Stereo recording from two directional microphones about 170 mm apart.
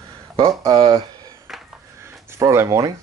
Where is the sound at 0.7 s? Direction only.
35° right (ahead or behind).